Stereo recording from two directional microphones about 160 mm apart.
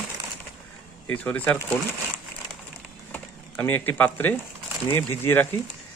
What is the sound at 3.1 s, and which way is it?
Speech, 10° left (ahead or behind).